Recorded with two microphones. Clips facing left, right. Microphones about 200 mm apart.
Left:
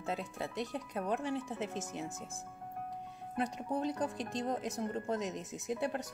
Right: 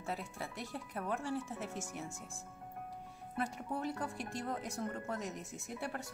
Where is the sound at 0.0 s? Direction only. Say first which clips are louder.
Left 4 dB; 20° left (ahead or behind).